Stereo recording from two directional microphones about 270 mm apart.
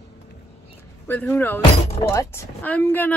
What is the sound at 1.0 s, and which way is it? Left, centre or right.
Speech, centre.